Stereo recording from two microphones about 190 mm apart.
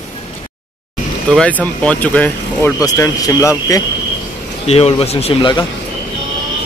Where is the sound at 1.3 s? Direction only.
5° left (ahead or behind).